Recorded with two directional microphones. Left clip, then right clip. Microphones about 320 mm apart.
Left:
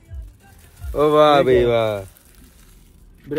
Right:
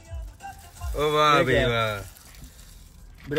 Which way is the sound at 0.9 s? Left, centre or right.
Centre.